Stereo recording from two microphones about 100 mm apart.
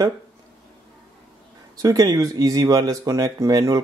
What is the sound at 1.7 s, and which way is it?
Speech, 40° right (ahead or behind).